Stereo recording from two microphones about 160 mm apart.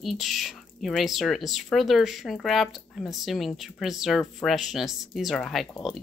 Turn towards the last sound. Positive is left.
turn(degrees=0)  # may be behind; listen again after turning